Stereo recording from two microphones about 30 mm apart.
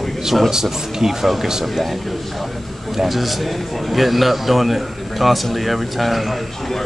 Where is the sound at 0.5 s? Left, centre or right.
Centre.